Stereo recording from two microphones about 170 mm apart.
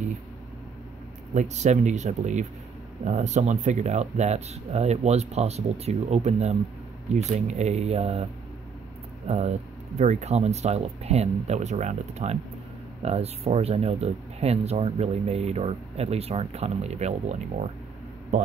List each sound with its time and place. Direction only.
1.3 s speech: 45° right (ahead or behind)